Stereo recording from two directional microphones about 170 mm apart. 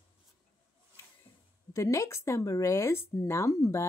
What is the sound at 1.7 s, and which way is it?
Speech, 15° left (ahead or behind).